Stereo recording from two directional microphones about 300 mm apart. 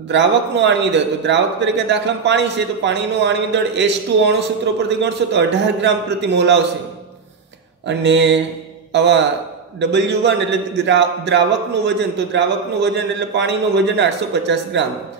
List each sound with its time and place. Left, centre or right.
0.1 s a man's voice: right
7.8 s a man's voice: right